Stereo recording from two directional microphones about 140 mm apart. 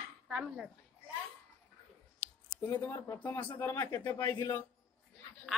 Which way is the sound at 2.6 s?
15° left (ahead or behind).